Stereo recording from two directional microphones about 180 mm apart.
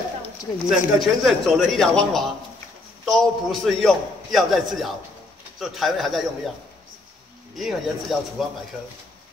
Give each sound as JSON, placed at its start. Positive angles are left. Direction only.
{"t": 0.7, "sound": "a man's voice", "side_deg": 0}
{"t": 7.5, "sound": "a man's voice", "side_deg": 0}